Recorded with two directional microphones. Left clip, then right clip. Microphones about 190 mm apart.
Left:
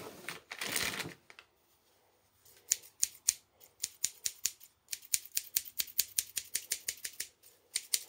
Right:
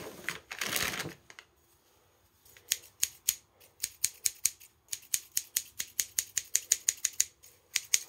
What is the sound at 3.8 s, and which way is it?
Scissors, 25° right (ahead or behind).